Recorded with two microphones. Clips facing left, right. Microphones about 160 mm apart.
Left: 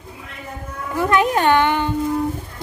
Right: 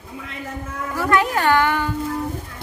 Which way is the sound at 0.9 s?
20° left (ahead or behind).